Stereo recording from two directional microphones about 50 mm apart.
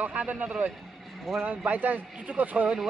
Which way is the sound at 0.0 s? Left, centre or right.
Right.